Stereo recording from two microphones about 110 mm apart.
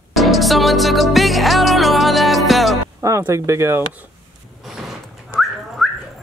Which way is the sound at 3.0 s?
25° right (ahead or behind).